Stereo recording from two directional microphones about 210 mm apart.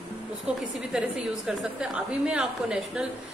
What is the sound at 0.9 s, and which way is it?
A woman's voice, 5° right (ahead or behind).